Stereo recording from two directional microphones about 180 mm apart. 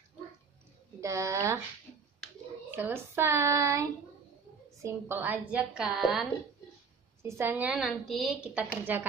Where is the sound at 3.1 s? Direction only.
15° right (ahead or behind).